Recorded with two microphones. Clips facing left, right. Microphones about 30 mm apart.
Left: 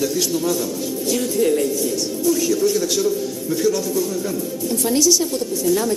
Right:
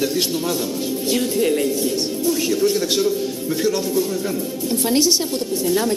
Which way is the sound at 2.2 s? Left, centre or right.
Right.